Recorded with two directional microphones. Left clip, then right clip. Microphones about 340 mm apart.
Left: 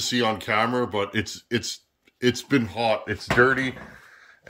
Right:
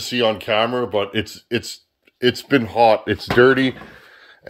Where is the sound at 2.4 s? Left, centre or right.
Centre.